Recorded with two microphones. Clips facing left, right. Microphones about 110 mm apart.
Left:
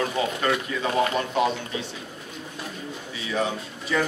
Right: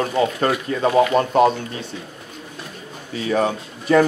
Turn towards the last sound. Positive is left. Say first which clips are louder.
# right 10 dB
turn(degrees=-50)  # may be behind; listen again after turning